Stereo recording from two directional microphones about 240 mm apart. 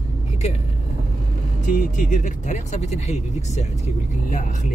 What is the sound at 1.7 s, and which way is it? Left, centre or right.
Speech, left.